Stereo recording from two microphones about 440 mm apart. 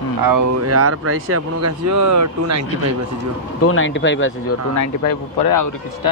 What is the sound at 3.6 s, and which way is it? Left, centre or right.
Speech, left.